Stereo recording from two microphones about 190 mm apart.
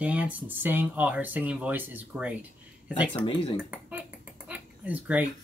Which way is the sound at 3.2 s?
25° left (ahead or behind).